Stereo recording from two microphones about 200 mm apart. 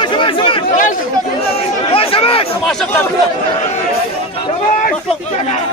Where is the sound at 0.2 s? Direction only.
25° left (ahead or behind).